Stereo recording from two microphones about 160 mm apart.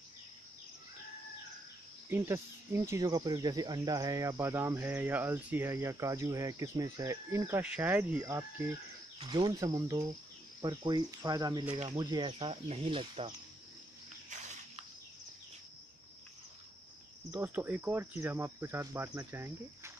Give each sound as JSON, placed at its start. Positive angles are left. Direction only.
{"t": 2.0, "sound": "speech", "side_deg": -15}
{"t": 7.6, "sound": "cricket", "side_deg": -10}
{"t": 9.2, "sound": "speech", "side_deg": -30}
{"t": 11.7, "sound": "speech", "side_deg": -40}
{"t": 12.0, "sound": "speech", "side_deg": -25}
{"t": 14.3, "sound": "cricket", "side_deg": -45}
{"t": 17.3, "sound": "cricket", "side_deg": -15}